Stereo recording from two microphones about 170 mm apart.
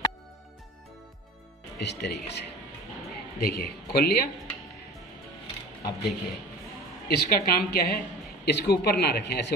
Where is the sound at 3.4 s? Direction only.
70° left (ahead or behind).